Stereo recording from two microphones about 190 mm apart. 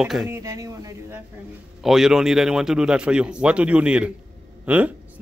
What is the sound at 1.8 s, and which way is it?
A man's voice, centre (ahead or behind).